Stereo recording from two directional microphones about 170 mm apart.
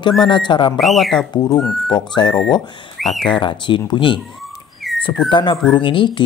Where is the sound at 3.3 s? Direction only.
30° left (ahead or behind).